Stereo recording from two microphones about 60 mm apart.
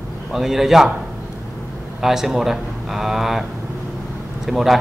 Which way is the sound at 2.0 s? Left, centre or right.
Centre.